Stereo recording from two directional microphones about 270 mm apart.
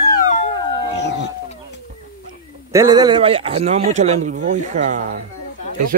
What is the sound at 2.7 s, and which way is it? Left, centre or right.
Speech, centre.